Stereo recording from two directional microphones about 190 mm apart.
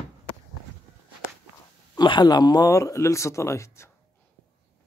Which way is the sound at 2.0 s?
25° left (ahead or behind).